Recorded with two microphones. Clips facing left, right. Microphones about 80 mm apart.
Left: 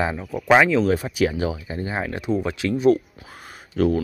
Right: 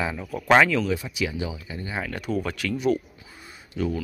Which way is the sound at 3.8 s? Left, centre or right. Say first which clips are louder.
Left 7 dB; left.